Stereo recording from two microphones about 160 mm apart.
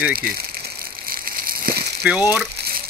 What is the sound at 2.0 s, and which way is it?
Speech, 10° right (ahead or behind).